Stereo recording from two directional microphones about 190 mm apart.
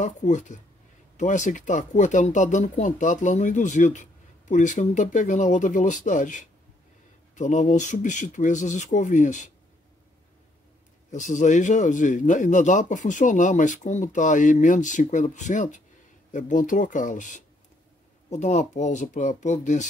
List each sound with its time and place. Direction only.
0.0 s speech: 40° left (ahead or behind)
11.1 s speech: 40° left (ahead or behind)